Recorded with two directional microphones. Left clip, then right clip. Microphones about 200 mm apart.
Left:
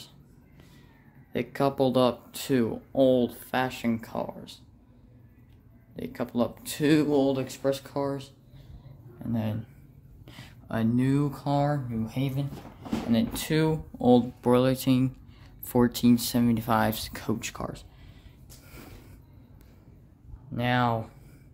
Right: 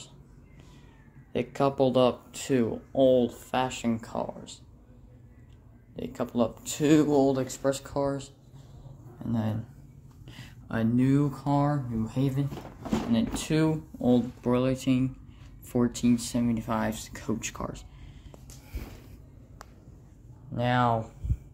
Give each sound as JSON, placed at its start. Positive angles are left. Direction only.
{"t": 1.3, "sound": "speech", "side_deg": 10}
{"t": 5.9, "sound": "speech", "side_deg": 10}
{"t": 9.3, "sound": "speech", "side_deg": 5}
{"t": 13.1, "sound": "speech", "side_deg": 25}
{"t": 20.5, "sound": "speech", "side_deg": 10}